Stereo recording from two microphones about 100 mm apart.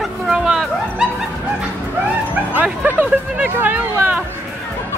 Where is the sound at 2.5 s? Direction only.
15° right (ahead or behind).